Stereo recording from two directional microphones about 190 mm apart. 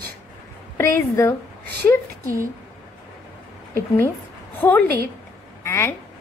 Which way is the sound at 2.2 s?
15° right (ahead or behind).